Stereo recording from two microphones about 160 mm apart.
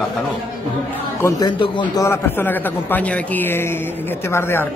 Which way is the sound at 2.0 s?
15° left (ahead or behind).